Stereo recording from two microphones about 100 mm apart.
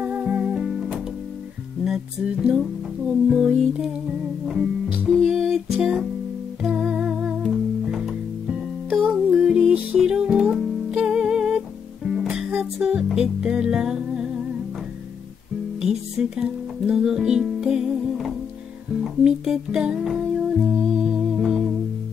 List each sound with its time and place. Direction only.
0.0 s music: 15° right (ahead or behind)
5.2 s music: 5° right (ahead or behind)
15.8 s speech: 5° right (ahead or behind)
19.0 s music: 5° right (ahead or behind)